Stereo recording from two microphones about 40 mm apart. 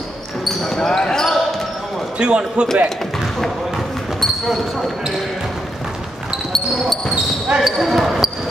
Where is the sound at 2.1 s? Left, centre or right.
Right.